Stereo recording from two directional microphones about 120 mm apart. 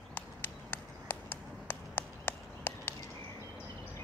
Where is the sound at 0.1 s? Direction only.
15° left (ahead or behind).